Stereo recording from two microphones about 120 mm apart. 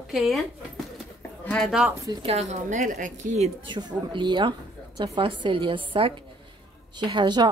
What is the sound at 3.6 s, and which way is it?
Speech, 40° right (ahead or behind).